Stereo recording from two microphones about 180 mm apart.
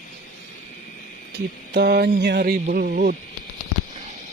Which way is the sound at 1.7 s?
60° right (ahead or behind).